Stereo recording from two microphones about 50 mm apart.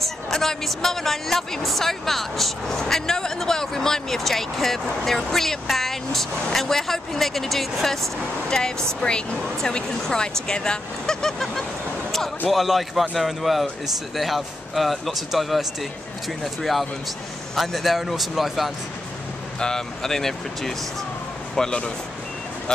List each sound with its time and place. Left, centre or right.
0.0 s speech: centre
19.6 s speech: centre